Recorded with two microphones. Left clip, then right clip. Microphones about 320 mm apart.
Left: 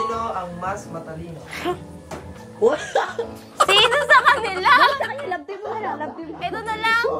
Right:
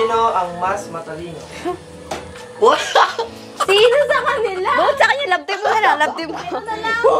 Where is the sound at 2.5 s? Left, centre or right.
Right.